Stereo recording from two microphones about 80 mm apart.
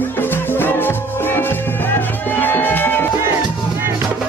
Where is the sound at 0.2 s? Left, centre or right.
Left.